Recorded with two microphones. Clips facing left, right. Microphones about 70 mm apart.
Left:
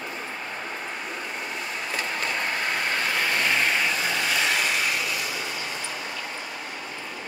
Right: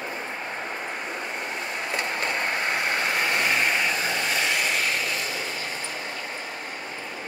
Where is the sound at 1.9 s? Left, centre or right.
Right.